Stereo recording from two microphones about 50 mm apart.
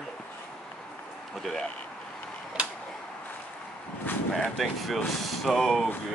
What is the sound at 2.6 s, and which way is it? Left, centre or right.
Tick-tock, right.